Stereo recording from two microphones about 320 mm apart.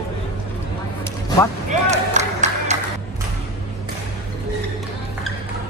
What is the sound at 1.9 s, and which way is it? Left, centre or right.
Music, right.